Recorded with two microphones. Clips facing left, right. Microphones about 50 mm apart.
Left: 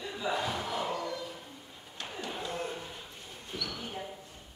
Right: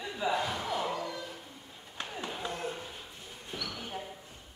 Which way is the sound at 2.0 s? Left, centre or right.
Right.